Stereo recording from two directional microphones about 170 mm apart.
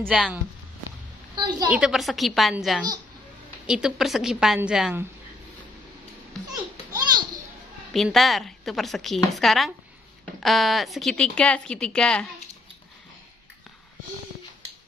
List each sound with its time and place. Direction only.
0.1 s speech: 5° right (ahead or behind)
1.3 s a woman's voice: 25° right (ahead or behind)
1.7 s a woman's voice: 5° right (ahead or behind)
6.5 s a sound: 25° right (ahead or behind)
7.9 s a woman's voice: centre (ahead or behind)